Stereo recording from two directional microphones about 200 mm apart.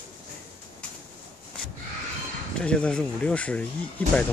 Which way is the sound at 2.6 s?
5° left (ahead or behind).